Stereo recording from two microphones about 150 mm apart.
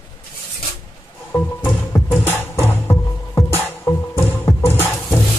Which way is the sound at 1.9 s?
15° left (ahead or behind).